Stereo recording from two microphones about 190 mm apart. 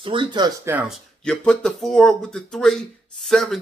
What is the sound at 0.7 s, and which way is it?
Speech, 10° right (ahead or behind).